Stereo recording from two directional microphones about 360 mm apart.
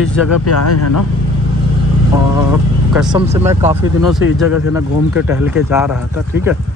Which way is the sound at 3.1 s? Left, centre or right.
Centre.